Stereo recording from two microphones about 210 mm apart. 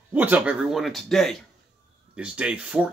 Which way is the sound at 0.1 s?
5° right (ahead or behind).